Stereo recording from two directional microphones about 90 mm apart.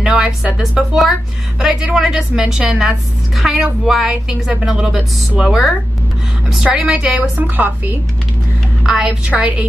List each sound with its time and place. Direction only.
0.0 s a woman's voice: 5° right (ahead or behind)
8.8 s a woman's voice: 5° right (ahead or behind)
9.3 s a woman's voice: 15° right (ahead or behind)